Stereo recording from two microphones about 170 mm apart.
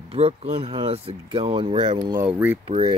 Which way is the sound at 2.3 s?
15° right (ahead or behind).